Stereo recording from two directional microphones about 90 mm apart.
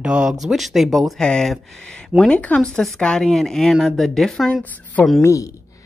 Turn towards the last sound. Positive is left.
turn(degrees=35)  # may be behind; listen again after turning